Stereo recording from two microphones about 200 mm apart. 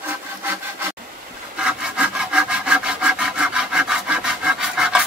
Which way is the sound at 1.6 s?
5° right (ahead or behind).